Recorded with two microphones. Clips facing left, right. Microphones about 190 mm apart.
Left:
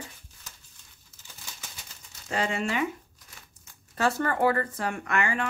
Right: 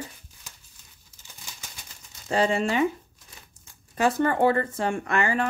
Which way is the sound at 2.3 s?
30° right (ahead or behind).